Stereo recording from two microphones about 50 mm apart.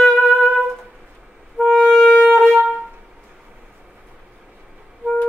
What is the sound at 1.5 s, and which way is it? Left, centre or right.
Music, centre.